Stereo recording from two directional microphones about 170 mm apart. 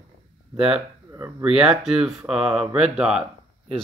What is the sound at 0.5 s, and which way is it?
Speech, 5° right (ahead or behind).